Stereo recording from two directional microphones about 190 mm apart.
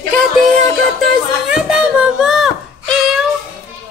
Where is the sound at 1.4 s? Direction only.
5° right (ahead or behind).